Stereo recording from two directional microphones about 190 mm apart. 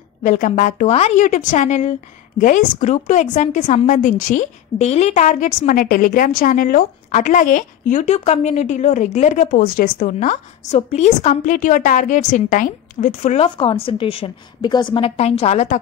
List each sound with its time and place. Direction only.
0.2 s a woman's voice: 40° left (ahead or behind)